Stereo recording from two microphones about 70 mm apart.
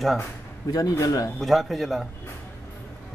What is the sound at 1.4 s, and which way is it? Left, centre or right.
Speech, centre.